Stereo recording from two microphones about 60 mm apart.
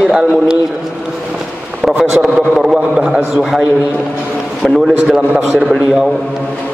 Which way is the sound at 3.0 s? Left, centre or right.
Centre.